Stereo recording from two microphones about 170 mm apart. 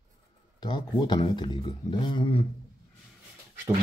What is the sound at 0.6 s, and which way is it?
Speech, 25° left (ahead or behind).